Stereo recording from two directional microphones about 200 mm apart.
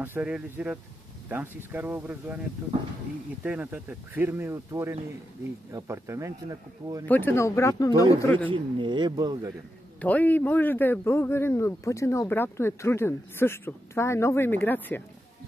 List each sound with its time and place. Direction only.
0.0 s speech: 10° right (ahead or behind)
3.4 s speech: 10° right (ahead or behind)
7.1 s a man's voice: 10° left (ahead or behind)
8.5 s speech: 25° right (ahead or behind)
9.9 s a man's voice: 10° left (ahead or behind)